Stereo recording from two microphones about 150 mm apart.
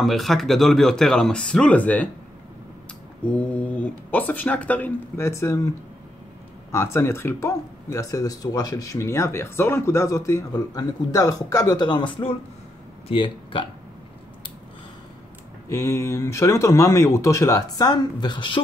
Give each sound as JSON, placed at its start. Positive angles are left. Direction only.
{"t": 0.0, "sound": "speech", "side_deg": 0}
{"t": 3.3, "sound": "speech", "side_deg": 10}
{"t": 6.7, "sound": "speech", "side_deg": 20}
{"t": 15.7, "sound": "speech", "side_deg": 20}